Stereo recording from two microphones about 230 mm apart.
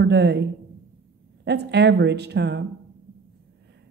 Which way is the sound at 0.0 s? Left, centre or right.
Right.